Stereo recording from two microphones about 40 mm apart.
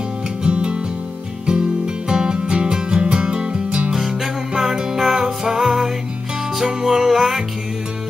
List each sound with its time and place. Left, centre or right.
0.4 s music: right
2.0 s music: centre
3.9 s music: centre